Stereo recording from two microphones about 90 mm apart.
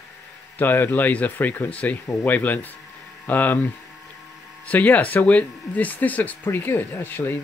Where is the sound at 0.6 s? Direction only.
20° left (ahead or behind).